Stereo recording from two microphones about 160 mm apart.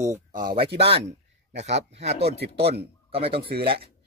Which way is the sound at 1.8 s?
40° right (ahead or behind).